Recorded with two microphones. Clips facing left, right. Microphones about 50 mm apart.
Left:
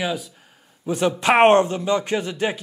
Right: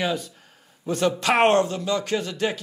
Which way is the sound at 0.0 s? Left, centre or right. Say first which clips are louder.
Even; centre.